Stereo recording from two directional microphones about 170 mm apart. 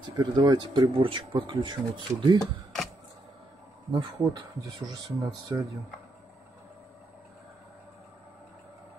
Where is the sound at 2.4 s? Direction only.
Centre (ahead or behind).